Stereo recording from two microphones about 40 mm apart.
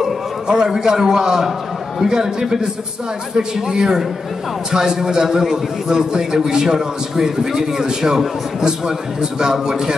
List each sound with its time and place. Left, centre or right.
0.5 s a man's voice: centre